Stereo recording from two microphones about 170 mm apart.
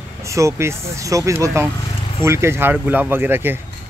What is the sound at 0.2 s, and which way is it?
Speech, 15° right (ahead or behind).